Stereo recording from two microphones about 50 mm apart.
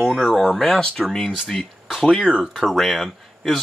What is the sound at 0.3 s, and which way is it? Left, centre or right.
Speech, centre.